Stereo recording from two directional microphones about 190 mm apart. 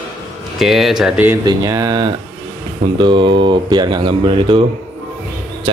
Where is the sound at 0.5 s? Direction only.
Centre (ahead or behind).